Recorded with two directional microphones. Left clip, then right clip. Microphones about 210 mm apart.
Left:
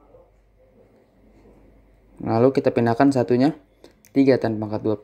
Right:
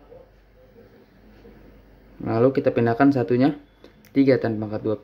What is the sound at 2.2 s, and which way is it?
Speech, 15° left (ahead or behind).